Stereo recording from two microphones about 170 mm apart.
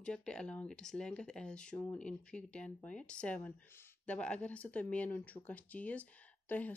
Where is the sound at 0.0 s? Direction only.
5° left (ahead or behind).